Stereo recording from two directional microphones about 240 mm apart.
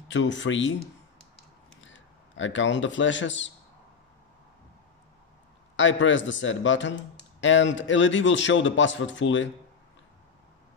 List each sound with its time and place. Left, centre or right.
0.1 s speech: left
1.8 s speech: left
5.8 s speech: left